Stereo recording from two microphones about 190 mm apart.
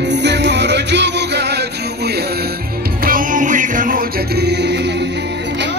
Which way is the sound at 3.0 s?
45° right (ahead or behind).